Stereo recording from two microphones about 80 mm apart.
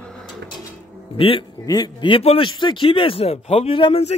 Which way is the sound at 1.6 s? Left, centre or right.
Left.